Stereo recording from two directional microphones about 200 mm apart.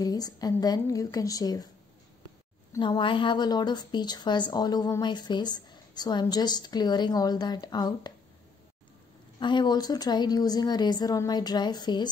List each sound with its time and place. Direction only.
0.0 s speech: 20° left (ahead or behind)
2.7 s speech: 20° left (ahead or behind)
9.4 s speech: 20° left (ahead or behind)